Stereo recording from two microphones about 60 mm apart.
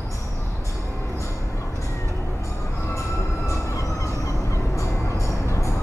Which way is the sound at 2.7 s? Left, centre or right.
Left.